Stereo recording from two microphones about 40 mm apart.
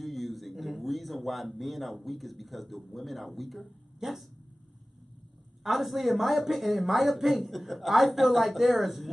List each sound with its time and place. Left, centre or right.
0.0 s a man's voice: centre
5.6 s speech: centre